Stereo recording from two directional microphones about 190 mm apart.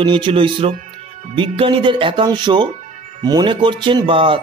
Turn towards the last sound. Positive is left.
turn(degrees=-25)  # may be behind; listen again after turning